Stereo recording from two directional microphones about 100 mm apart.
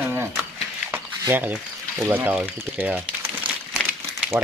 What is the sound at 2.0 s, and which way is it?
Speech, 20° right (ahead or behind).